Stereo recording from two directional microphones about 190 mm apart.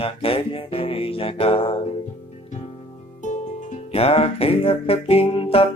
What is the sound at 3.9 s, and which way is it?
Music, 30° left (ahead or behind).